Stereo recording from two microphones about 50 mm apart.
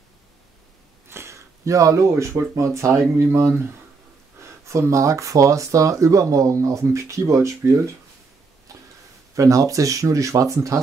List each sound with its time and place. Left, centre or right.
1.0 s a sound: right
2.5 s speech: right
4.4 s speech: right
9.3 s speech: right